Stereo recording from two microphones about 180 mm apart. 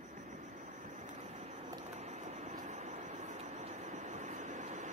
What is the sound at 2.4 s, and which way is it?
Vehicle, 40° right (ahead or behind).